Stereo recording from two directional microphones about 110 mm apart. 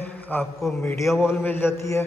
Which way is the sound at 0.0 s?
15° left (ahead or behind).